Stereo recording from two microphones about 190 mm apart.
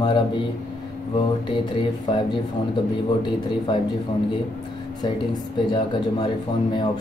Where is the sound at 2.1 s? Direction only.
25° left (ahead or behind).